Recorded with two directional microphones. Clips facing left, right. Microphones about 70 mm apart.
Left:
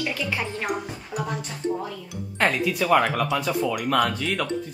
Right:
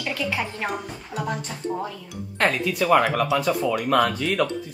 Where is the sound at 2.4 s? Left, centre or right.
Centre.